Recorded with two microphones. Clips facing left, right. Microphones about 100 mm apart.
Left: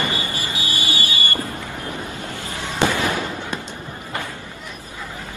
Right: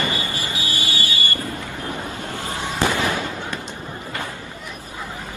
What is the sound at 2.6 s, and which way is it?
Fireworks, 25° right (ahead or behind).